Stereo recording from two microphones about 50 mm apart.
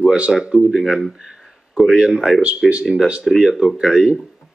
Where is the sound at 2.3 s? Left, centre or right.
Right.